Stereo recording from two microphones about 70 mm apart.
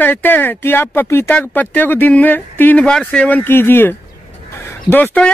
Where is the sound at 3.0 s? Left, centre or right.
Centre.